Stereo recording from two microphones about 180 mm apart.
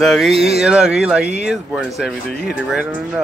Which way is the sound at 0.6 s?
5° right (ahead or behind).